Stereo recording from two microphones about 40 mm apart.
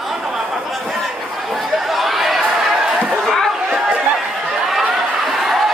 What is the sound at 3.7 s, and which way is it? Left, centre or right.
Chatter, right.